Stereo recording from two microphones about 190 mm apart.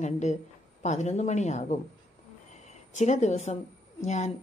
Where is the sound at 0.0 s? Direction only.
40° left (ahead or behind).